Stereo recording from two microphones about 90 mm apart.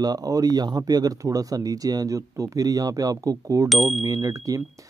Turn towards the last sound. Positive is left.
turn(degrees=-40)  # may be behind; listen again after turning